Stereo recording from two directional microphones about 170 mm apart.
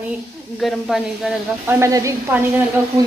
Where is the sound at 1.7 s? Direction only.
20° right (ahead or behind).